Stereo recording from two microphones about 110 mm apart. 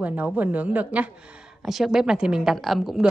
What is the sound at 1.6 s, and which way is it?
A woman's voice, 5° right (ahead or behind).